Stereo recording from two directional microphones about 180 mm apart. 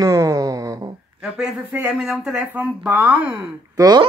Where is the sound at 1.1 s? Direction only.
5° right (ahead or behind).